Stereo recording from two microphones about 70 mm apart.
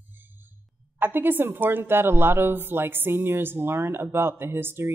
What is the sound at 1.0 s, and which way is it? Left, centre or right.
Speech, right.